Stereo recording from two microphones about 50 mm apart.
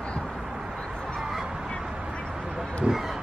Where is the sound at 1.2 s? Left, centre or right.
Centre.